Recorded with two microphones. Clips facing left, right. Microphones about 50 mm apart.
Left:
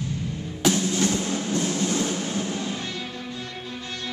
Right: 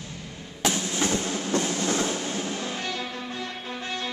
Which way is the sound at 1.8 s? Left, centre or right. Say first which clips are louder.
Left 1 dB; right.